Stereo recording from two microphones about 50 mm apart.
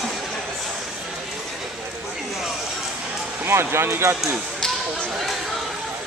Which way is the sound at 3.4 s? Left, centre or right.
Right.